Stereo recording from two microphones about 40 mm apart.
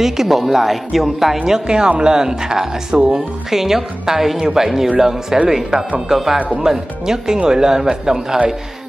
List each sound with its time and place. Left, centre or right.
0.0 s a woman's voice: centre
1.7 s speech: right